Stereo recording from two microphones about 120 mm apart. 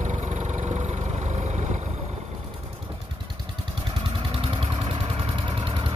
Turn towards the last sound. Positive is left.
turn(degrees=-50)  # may be behind; listen again after turning